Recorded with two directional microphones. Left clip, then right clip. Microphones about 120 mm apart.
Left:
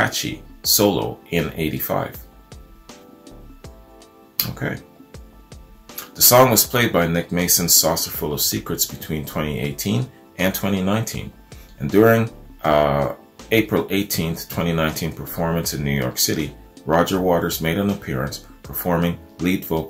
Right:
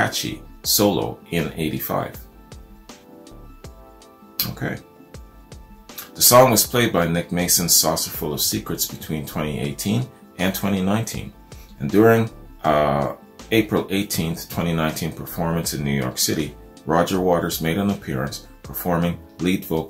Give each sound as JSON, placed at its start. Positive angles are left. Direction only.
{"t": 0.0, "sound": "speech", "side_deg": 30}
{"t": 2.9, "sound": "music", "side_deg": 0}
{"t": 4.4, "sound": "music", "side_deg": 30}
{"t": 5.9, "sound": "speech", "side_deg": 30}
{"t": 19.4, "sound": "speech", "side_deg": 0}